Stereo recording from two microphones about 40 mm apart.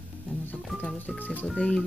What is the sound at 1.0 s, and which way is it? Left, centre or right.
Speech, left.